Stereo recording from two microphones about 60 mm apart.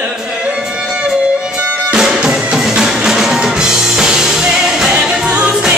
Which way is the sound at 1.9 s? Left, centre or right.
Centre.